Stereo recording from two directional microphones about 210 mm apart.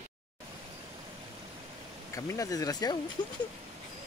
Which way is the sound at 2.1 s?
15° left (ahead or behind).